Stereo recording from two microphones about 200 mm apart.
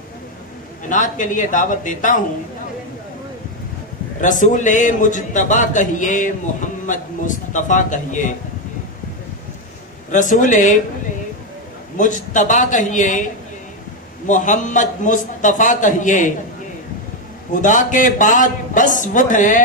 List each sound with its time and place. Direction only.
0.8 s a man's voice: 40° left (ahead or behind)
4.2 s a man's voice: 40° left (ahead or behind)
10.1 s a man's voice: 40° left (ahead or behind)
12.0 s a man's voice: 40° left (ahead or behind)
17.6 s a man's voice: 40° left (ahead or behind)